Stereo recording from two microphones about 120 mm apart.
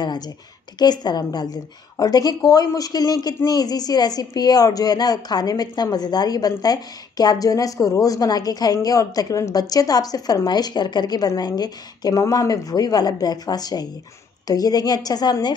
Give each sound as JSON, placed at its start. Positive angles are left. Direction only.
{"t": 0.7, "sound": "a woman's voice", "side_deg": 35}